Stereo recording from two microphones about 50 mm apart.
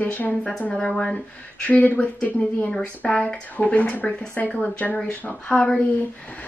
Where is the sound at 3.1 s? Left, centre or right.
Centre.